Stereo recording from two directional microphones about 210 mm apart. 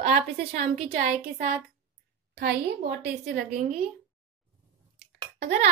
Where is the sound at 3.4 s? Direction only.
40° right (ahead or behind).